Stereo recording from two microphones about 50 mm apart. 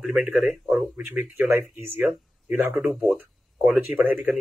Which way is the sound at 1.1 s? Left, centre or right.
Right.